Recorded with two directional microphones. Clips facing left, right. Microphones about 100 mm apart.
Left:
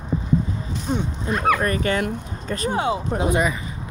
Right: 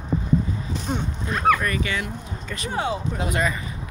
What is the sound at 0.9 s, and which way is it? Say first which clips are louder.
Speech: left 4 dB; centre (ahead or behind).